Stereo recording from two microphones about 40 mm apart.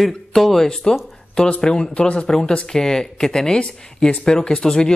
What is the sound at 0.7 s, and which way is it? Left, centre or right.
Speech, centre.